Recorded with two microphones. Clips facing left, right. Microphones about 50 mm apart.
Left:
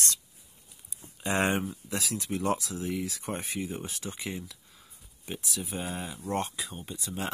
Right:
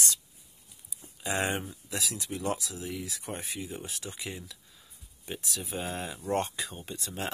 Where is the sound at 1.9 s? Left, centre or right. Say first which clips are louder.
Left 1 dB; left.